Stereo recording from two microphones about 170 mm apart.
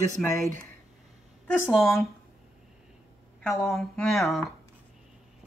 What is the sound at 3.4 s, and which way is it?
A woman's voice, centre (ahead or behind).